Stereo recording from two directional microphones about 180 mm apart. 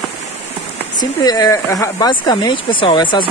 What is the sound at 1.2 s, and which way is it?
Speech, 20° left (ahead or behind).